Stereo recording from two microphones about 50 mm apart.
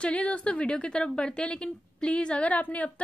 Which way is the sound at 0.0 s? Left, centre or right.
Left.